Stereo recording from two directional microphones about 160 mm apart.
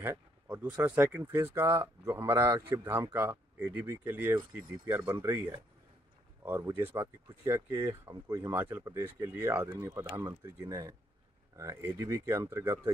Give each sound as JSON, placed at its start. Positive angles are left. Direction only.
{"t": 0.0, "sound": "speech", "side_deg": -10}